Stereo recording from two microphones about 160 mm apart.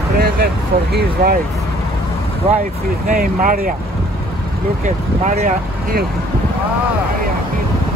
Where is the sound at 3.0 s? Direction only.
65° right (ahead or behind).